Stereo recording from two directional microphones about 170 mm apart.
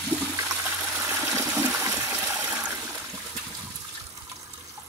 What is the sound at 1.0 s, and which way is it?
Water, 15° right (ahead or behind).